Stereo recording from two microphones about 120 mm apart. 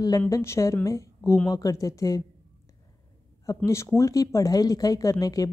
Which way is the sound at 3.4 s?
25° left (ahead or behind).